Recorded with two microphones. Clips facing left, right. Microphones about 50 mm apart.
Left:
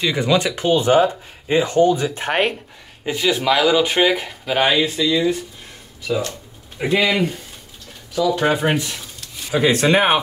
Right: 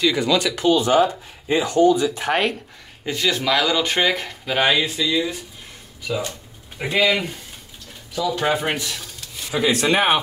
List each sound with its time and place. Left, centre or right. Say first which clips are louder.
0.0 s speech: left 1 dB; left
3.1 s speech: left 3 dB; centre
6.0 s speech: left 3 dB; centre
6.8 s speech: left 2 dB; centre
8.7 s speech: left 4 dB; centre
9.5 s speech: left 3 dB; left
9.8 s speech: left 1 dB; centre